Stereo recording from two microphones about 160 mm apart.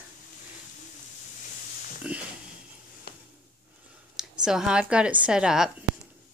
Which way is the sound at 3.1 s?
75° left (ahead or behind).